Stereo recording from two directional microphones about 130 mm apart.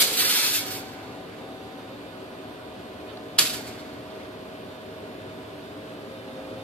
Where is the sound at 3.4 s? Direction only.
5° left (ahead or behind).